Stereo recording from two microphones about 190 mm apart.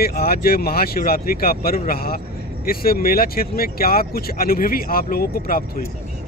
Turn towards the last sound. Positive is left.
turn(degrees=50)  # may be behind; listen again after turning